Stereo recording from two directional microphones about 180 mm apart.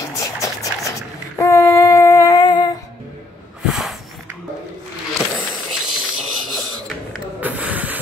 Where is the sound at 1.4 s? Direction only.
15° left (ahead or behind).